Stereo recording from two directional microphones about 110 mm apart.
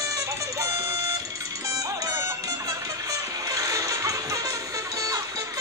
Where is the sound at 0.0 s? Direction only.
30° right (ahead or behind).